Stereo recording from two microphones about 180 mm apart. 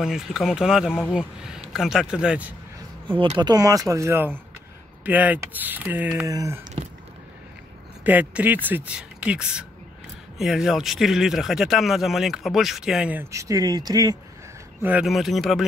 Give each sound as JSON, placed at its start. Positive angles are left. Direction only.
{"t": 0.0, "sound": "speech", "side_deg": 0}
{"t": 3.1, "sound": "speech", "side_deg": -30}
{"t": 8.0, "sound": "speech", "side_deg": -10}
{"t": 14.8, "sound": "speech", "side_deg": -10}